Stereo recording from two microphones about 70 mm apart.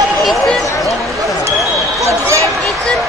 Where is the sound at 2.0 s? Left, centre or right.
Right.